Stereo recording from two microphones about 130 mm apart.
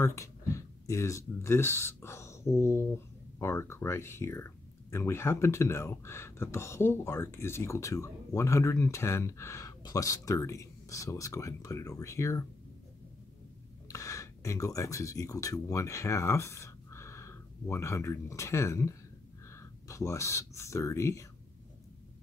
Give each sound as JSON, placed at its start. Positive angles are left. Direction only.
{"t": 0.0, "sound": "speech", "side_deg": 20}
{"t": 13.8, "sound": "speech", "side_deg": 25}